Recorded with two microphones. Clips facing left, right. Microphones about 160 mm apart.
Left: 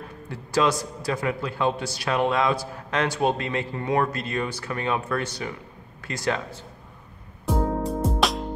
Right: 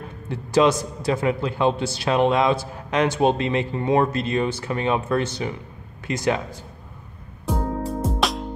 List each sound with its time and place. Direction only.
0.3 s a man's voice: 20° right (ahead or behind)
7.4 s music: centre (ahead or behind)